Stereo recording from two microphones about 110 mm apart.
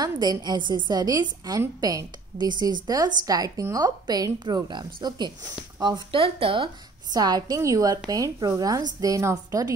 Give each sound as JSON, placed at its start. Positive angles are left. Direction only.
{"t": 0.0, "sound": "a woman's voice", "side_deg": -40}
{"t": 6.1, "sound": "speech", "side_deg": -55}
{"t": 7.1, "sound": "a woman's voice", "side_deg": -35}